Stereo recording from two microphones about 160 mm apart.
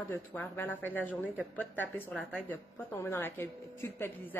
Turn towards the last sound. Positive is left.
turn(degrees=15)  # may be behind; listen again after turning